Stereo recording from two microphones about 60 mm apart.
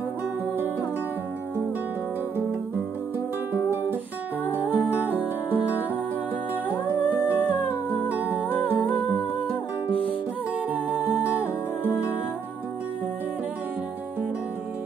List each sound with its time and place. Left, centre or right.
4.5 s music: right
7.3 s humming: right
8.6 s humming: left
10.7 s music: right